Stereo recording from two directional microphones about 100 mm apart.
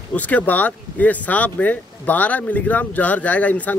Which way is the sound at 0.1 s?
15° left (ahead or behind).